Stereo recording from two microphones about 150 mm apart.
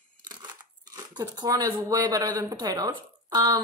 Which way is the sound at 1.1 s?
25° right (ahead or behind).